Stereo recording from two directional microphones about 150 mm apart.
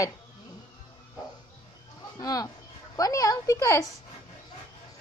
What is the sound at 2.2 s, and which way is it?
Speech, 25° left (ahead or behind).